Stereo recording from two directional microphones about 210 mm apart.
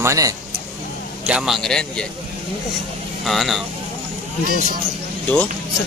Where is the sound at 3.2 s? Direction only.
Centre (ahead or behind).